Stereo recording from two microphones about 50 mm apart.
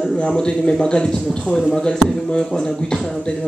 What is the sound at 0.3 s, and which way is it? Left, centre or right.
A man's voice, centre.